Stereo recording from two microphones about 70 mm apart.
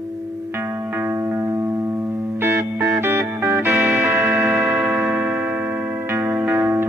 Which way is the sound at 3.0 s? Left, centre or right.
Right.